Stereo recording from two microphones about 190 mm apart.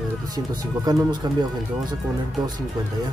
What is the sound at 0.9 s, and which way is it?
Speech, 20° right (ahead or behind).